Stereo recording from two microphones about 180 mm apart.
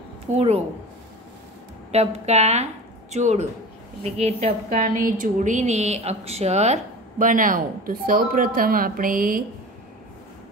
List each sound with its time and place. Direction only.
0.3 s a woman's voice: 35° right (ahead or behind)
1.9 s a woman's voice: 35° right (ahead or behind)